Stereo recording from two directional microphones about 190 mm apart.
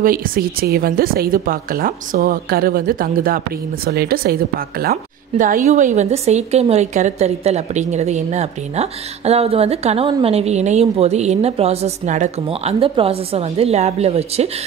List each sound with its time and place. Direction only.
0.0 s a woman's voice: 50° right (ahead or behind); by 14.5 s 35° right (ahead or behind)